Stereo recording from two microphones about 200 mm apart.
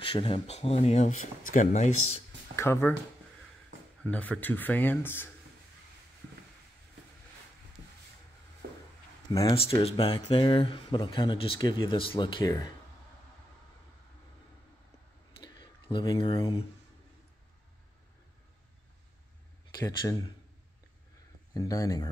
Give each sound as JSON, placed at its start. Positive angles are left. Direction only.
{"t": 0.0, "sound": "speech", "side_deg": 25}
{"t": 2.5, "sound": "speech", "side_deg": 10}
{"t": 4.0, "sound": "speech", "side_deg": 5}
{"t": 8.6, "sound": "a sound", "side_deg": -50}
{"t": 9.5, "sound": "speech", "side_deg": 30}
{"t": 15.4, "sound": "a sound", "side_deg": 25}
{"t": 19.8, "sound": "speech", "side_deg": 20}
{"t": 21.5, "sound": "speech", "side_deg": 15}